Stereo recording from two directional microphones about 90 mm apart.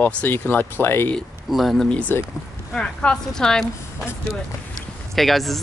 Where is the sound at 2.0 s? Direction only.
15° left (ahead or behind).